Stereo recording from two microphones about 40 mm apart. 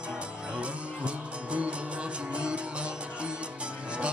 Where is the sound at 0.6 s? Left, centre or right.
Right.